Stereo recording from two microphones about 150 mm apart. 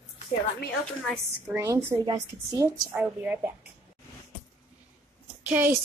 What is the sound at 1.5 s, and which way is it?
A woman's voice, 20° right (ahead or behind).